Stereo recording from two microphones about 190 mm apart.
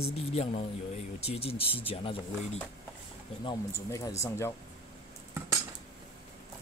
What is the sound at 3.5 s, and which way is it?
Speech, 20° left (ahead or behind).